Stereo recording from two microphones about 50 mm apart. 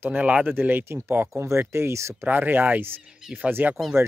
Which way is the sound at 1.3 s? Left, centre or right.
Right.